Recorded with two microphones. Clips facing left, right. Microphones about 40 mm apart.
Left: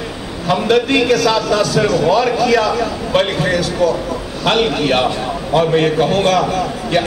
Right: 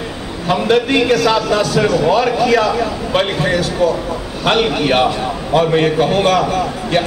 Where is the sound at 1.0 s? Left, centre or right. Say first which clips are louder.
Even; right; by 7.1 s centre.